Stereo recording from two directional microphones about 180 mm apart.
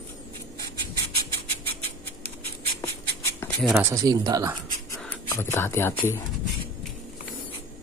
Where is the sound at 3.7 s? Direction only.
15° right (ahead or behind).